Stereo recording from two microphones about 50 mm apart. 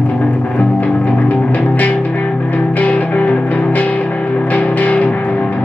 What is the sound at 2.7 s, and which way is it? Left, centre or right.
Music, left.